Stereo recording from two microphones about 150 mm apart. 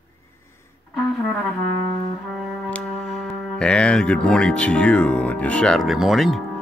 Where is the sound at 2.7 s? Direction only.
5° left (ahead or behind).